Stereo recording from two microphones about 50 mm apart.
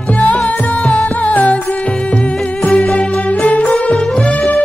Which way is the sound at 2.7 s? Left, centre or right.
Left.